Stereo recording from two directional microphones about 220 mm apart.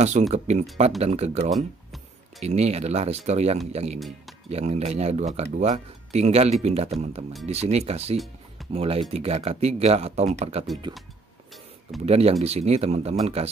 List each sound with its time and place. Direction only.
0.3 s speech: 30° right (ahead or behind)
12.1 s speech: 25° right (ahead or behind)